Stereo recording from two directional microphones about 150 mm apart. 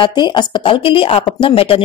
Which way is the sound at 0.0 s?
30° left (ahead or behind).